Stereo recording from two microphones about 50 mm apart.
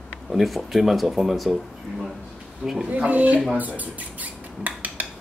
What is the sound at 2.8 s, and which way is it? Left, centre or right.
Speech, right.